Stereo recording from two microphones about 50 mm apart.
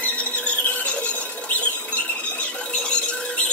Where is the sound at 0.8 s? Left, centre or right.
Left.